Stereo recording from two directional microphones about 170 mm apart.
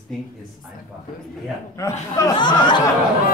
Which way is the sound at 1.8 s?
20° left (ahead or behind).